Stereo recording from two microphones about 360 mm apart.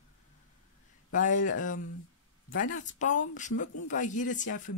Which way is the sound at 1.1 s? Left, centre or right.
Left.